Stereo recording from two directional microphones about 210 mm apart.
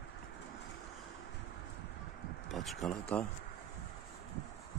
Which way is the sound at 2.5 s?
Centre (ahead or behind).